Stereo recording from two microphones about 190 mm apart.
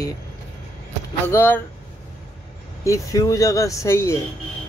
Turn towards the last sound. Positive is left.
turn(degrees=15)  # may be behind; listen again after turning